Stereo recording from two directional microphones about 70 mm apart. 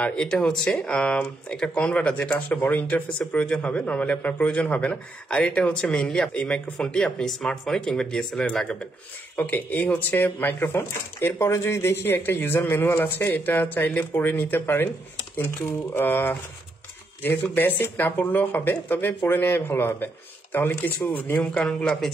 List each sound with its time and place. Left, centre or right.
0.0 s speech: centre
9.4 s speech: left
17.6 s speech: left
21.5 s speech: centre